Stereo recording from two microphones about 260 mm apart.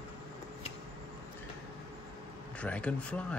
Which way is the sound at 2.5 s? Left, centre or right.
Centre.